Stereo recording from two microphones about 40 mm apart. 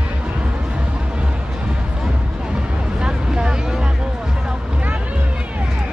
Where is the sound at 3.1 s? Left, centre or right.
Right.